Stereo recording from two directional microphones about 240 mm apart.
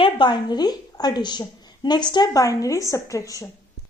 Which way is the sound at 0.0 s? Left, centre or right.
Centre.